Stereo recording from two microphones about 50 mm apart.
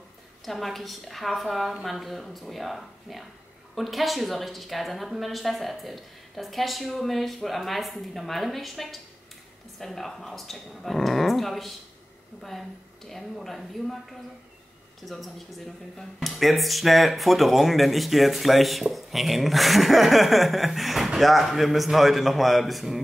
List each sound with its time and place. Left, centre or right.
0.5 s speech: centre
15.0 s speech: centre